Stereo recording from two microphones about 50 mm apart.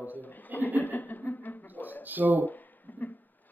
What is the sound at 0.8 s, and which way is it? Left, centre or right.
Chuckle, left.